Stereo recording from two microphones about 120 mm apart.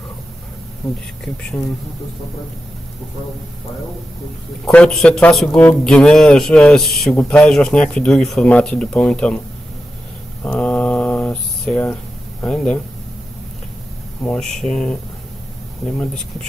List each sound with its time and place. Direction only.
4.6 s a man's voice: 10° left (ahead or behind)
10.4 s mantra: 10° left (ahead or behind)
11.6 s speech: 10° left (ahead or behind)
14.2 s a man's voice: 5° left (ahead or behind)